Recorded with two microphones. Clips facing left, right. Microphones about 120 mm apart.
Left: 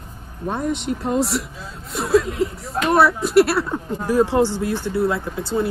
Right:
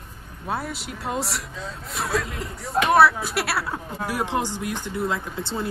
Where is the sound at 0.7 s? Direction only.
Centre (ahead or behind).